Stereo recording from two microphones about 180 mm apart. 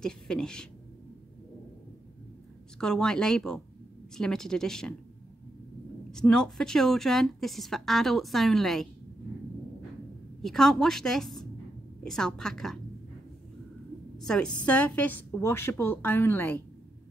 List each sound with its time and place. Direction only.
0.0 s speech: 5° left (ahead or behind)
2.8 s speech: 5° left (ahead or behind)
6.1 s speech: 5° left (ahead or behind)
10.4 s speech: centre (ahead or behind)
14.2 s a woman's voice: 5° left (ahead or behind)